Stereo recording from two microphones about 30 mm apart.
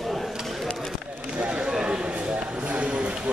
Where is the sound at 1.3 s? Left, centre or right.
Right.